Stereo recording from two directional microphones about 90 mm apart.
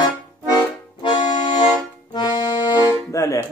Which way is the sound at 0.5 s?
55° left (ahead or behind).